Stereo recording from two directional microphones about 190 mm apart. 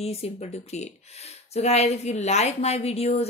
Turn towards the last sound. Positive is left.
turn(degrees=35)  # may be behind; listen again after turning